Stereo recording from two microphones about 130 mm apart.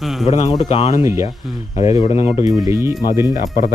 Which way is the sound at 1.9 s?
50° left (ahead or behind).